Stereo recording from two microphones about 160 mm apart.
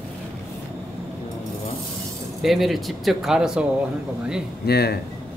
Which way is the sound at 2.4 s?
Centre (ahead or behind).